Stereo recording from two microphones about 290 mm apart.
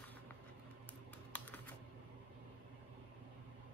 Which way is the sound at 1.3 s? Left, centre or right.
Centre.